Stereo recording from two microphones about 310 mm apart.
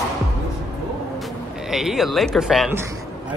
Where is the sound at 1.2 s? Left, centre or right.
Centre.